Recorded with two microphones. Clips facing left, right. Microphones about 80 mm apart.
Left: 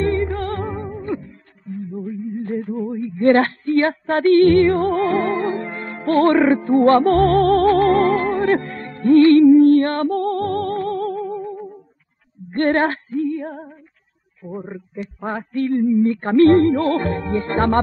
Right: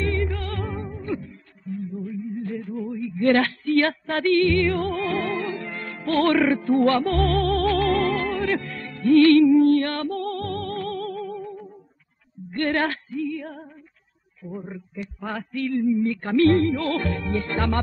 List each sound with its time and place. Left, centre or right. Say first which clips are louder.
0.0 s music: left 6 dB; left
2.0 s a sound: left 4 dB; left
6.8 s music: left 10 dB; left
9.5 s music: left 6 dB; left
12.4 s music: left 6 dB; left
14.6 s a sound: left 5 dB; left